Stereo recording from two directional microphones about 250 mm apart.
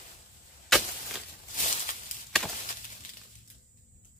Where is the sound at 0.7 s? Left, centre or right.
Centre.